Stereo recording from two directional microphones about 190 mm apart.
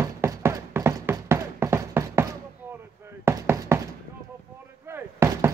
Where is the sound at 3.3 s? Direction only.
15° right (ahead or behind).